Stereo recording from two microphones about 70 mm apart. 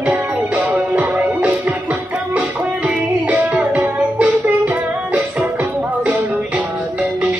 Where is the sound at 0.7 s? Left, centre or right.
Right.